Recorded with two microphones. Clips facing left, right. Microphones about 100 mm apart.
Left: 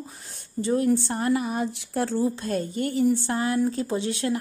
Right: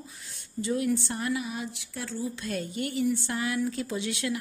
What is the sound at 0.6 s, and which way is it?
A woman's voice, 40° left (ahead or behind).